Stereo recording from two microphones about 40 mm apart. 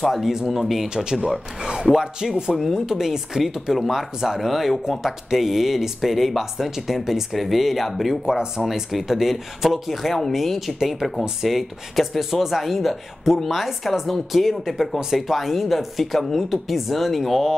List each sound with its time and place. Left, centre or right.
0.0 s speech: centre
0.8 s speech: centre
1.1 s speech: centre
1.6 s music: centre
1.9 s speech: centre